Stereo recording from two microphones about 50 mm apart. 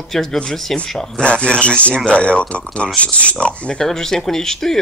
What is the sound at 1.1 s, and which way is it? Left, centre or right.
Speech, left.